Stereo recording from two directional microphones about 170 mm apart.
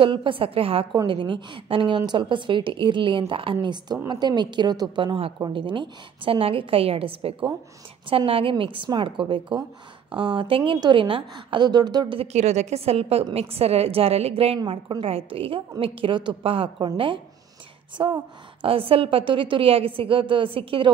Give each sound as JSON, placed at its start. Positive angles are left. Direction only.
{"t": 0.0, "sound": "a woman's voice", "side_deg": -30}